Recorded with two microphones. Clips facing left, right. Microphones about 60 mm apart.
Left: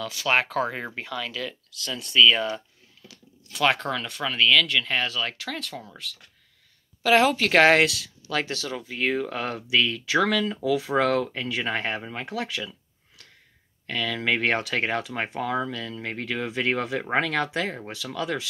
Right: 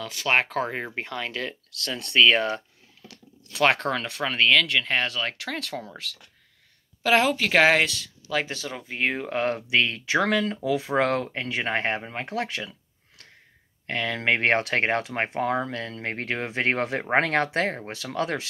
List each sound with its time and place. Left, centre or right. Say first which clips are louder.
0.0 s speech: even; right
2.0 s speech: even; right
2.2 s speech: right 1 dB; right
3.6 s speech: right 2 dB; right
7.0 s speech: left 2 dB; right
7.2 s speech: left 2 dB; centre
8.3 s speech: even; centre; by 10.1 s right
10.1 s speech: even; centre; by 12.7 s right
13.8 s speech: right 1 dB; right